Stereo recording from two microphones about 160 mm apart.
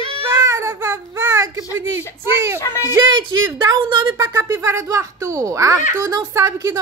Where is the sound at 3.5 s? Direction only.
30° right (ahead or behind).